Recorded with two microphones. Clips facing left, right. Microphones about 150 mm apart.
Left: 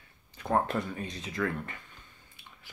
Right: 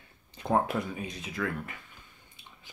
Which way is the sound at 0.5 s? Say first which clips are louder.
Right 1 dB; 10° right (ahead or behind).